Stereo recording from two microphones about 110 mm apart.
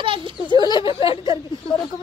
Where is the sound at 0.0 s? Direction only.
50° right (ahead or behind).